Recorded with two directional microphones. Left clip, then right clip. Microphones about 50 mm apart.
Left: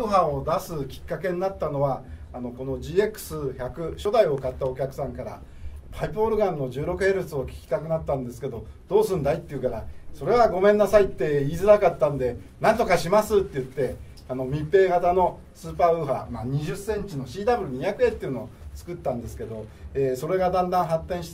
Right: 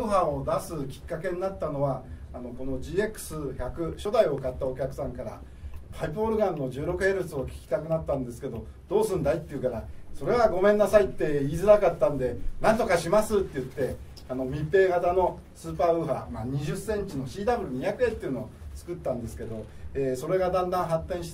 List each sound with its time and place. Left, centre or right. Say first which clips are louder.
0.0 s speech: left 3 dB; left; by 17.3 s centre
17.5 s speech: left 3 dB; left